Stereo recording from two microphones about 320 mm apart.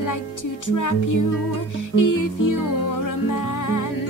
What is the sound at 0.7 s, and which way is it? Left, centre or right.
Music, left.